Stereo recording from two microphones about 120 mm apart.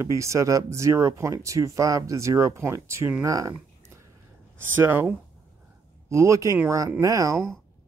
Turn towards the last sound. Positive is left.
turn(degrees=-25)  # may be behind; listen again after turning